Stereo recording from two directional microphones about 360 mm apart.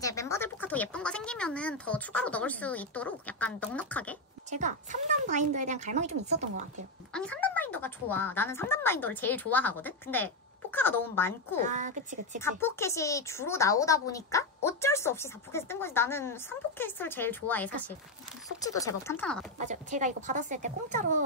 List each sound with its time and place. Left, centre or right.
0.0 s speech: centre
4.5 s speech: centre
7.1 s speech: centre
11.6 s speech: centre
12.4 s a woman's voice: centre
19.6 s speech: right